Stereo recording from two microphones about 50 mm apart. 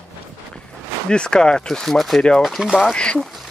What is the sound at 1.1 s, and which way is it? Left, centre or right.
Speech, centre.